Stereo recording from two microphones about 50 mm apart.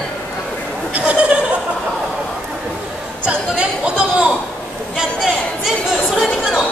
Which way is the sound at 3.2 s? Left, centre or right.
Right.